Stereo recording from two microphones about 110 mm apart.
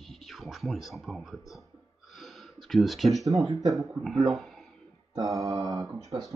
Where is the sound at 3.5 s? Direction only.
35° right (ahead or behind).